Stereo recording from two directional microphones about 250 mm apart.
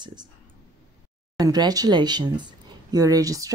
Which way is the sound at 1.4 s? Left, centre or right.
Centre.